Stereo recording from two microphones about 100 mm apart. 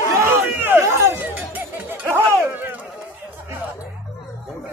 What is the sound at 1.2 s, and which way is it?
Run, 15° right (ahead or behind).